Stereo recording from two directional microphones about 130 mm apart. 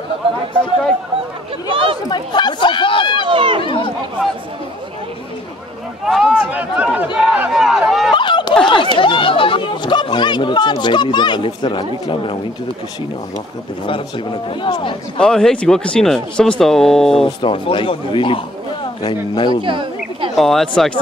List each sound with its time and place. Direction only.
2.0 s speech: 35° left (ahead or behind)
3.3 s speech: 40° right (ahead or behind)
3.6 s speech: 40° left (ahead or behind)
6.0 s speech: centre (ahead or behind)
8.1 s a sound: 40° left (ahead or behind)
8.6 s speech: 40° left (ahead or behind)
14.6 s speech: 40° left (ahead or behind)
15.1 s speech: 5° left (ahead or behind)
17.4 s speech: 40° left (ahead or behind)
19.6 s a sound: 40° right (ahead or behind)
20.3 s speech: centre (ahead or behind)